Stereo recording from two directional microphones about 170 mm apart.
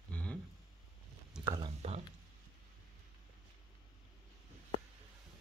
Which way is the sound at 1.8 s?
35° right (ahead or behind).